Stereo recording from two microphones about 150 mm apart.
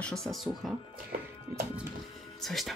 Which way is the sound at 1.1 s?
70° right (ahead or behind).